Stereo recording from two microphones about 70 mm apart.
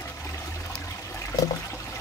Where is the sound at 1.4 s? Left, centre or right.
Left.